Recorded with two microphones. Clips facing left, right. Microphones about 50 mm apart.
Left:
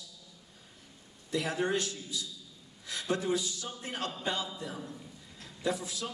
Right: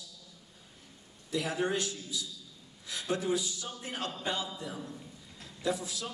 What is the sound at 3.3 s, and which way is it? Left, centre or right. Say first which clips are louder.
Speech: even; centre.